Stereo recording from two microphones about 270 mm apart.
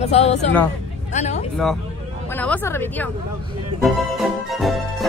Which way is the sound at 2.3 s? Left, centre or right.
Centre.